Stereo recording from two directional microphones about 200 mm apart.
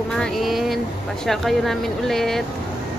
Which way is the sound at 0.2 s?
Centre (ahead or behind).